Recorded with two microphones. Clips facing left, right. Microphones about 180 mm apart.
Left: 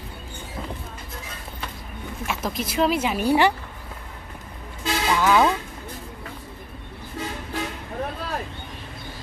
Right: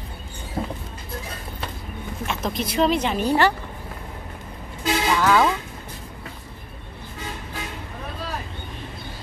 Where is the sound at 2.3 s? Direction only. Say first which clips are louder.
Right 1 dB; 5° left (ahead or behind).